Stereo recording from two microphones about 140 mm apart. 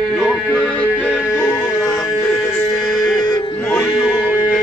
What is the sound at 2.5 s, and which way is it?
Music, centre (ahead or behind).